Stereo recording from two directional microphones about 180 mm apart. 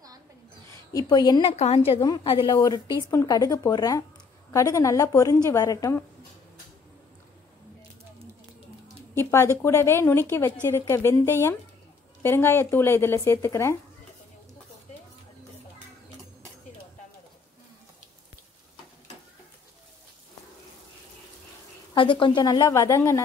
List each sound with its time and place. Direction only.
0.9 s a woman's voice: 25° left (ahead or behind)
9.1 s a woman's voice: 15° left (ahead or behind)
21.9 s a woman's voice: 30° left (ahead or behind)